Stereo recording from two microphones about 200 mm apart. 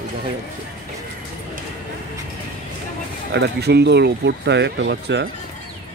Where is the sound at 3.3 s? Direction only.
55° right (ahead or behind).